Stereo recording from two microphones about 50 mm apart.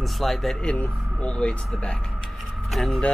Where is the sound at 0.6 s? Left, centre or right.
Left.